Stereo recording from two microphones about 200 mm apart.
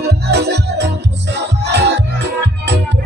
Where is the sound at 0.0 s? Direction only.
55° right (ahead or behind).